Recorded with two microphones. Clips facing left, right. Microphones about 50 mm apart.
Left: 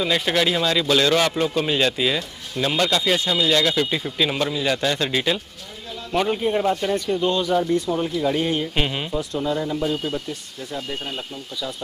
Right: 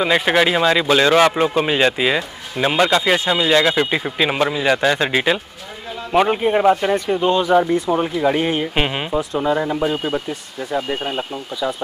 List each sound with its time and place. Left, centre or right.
0.0 s speech: right